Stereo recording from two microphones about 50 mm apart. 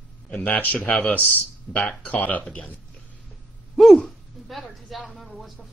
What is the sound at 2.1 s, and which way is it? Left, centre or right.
Speech, left.